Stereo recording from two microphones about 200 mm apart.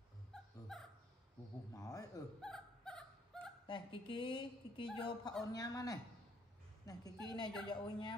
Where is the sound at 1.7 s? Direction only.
15° left (ahead or behind).